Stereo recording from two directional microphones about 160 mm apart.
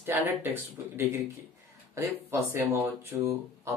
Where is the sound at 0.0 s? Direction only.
15° right (ahead or behind).